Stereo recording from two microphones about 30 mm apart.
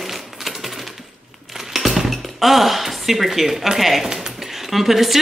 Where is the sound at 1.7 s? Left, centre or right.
Centre.